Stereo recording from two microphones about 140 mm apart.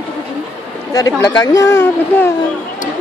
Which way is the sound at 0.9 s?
25° left (ahead or behind).